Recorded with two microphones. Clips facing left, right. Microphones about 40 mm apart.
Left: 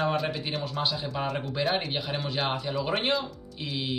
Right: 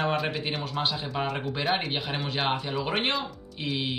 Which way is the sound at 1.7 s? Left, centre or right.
Right.